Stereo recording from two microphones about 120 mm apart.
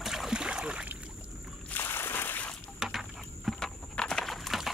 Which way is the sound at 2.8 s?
5° right (ahead or behind).